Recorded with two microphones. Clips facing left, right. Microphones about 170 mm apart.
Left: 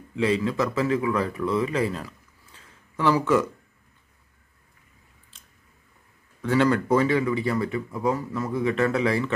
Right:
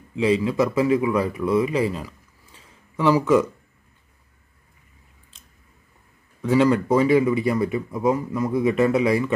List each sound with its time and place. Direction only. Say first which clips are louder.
0.1 s speech: right 3 dB; 5° right (ahead or behind)
1.5 s a sound: right 5 dB; 10° right (ahead or behind)
6.5 s speech: right 3 dB; 10° right (ahead or behind)